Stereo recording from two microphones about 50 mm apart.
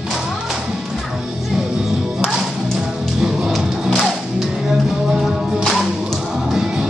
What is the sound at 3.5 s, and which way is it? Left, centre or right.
Music, centre.